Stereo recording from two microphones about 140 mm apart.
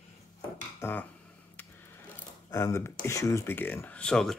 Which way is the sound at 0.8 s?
20° left (ahead or behind).